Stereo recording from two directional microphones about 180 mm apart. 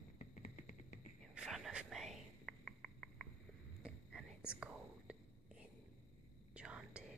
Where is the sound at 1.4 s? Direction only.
Centre (ahead or behind).